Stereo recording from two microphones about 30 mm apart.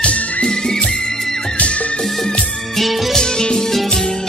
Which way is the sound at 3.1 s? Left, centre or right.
Left.